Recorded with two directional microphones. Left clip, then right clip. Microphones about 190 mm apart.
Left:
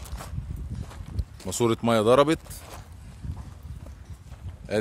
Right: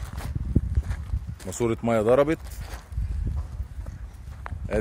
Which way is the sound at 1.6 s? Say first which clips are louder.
Left 1 dB; 25° left (ahead or behind).